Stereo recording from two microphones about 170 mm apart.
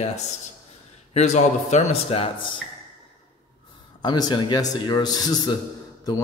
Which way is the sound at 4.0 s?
25° left (ahead or behind).